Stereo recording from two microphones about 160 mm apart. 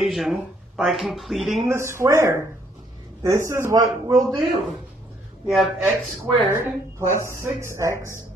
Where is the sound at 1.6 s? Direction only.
15° right (ahead or behind).